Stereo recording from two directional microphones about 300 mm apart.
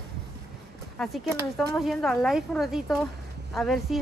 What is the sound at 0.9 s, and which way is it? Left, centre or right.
A woman's voice, centre.